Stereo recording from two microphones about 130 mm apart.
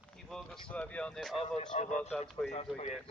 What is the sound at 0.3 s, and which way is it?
Speech, 10° left (ahead or behind).